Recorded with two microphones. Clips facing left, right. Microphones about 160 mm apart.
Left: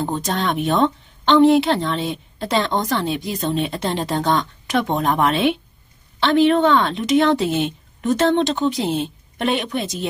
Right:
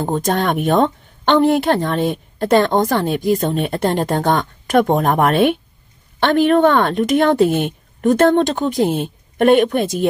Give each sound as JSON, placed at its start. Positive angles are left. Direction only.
{"t": 0.0, "sound": "speech", "side_deg": -50}